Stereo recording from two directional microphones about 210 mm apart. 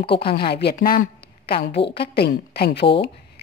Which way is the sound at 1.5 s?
55° left (ahead or behind).